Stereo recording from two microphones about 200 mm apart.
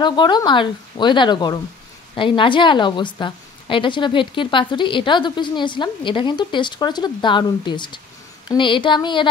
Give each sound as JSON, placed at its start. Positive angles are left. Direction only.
{"t": 0.0, "sound": "a woman's voice", "side_deg": 20}